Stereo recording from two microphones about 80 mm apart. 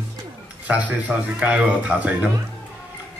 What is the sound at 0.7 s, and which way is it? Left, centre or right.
A man's voice, centre.